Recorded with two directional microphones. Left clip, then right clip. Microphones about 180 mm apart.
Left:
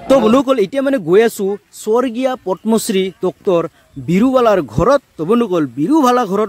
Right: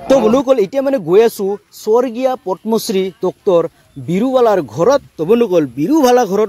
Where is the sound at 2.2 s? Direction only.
25° left (ahead or behind).